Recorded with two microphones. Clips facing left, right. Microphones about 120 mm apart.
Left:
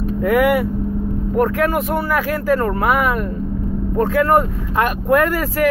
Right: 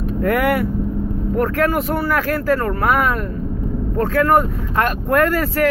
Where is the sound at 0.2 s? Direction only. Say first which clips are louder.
Left 2 dB; 5° left (ahead or behind).